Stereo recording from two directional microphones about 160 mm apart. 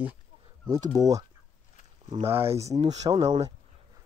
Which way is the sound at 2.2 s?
15° right (ahead or behind).